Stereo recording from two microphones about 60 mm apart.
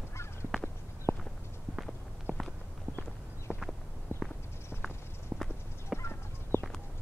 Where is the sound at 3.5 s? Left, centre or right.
Centre.